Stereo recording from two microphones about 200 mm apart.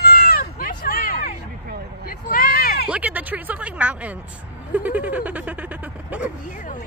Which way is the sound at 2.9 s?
10° right (ahead or behind).